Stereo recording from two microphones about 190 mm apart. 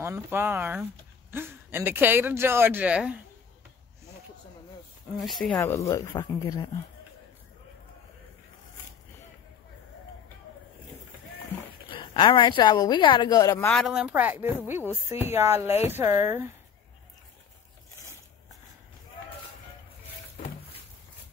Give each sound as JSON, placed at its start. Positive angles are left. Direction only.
{"t": 0.0, "sound": "speech", "side_deg": -10}
{"t": 5.2, "sound": "speech", "side_deg": 0}
{"t": 5.6, "sound": "speech", "side_deg": 15}
{"t": 11.9, "sound": "a woman's voice", "side_deg": 25}
{"t": 13.7, "sound": "speech", "side_deg": 0}